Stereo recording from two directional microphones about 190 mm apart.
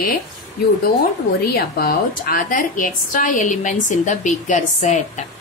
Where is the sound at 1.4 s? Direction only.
50° left (ahead or behind).